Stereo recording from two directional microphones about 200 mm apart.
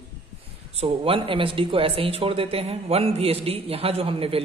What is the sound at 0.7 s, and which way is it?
A man's voice, 25° right (ahead or behind).